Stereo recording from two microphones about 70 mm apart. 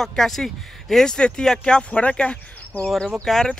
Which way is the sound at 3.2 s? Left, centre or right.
Centre.